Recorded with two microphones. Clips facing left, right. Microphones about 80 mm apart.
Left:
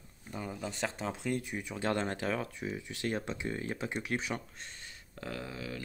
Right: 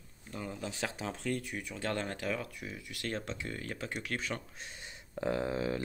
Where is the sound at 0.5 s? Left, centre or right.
Centre.